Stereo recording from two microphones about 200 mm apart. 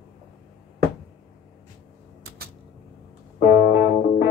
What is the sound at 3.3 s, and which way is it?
Music, 50° left (ahead or behind).